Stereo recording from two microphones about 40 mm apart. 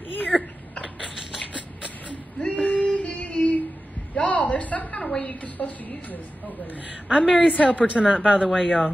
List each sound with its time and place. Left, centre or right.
0.3 s a sound: centre
2.4 s female singing: left
4.1 s a woman's voice: left
7.2 s a woman's voice: left
7.8 s a woman's voice: right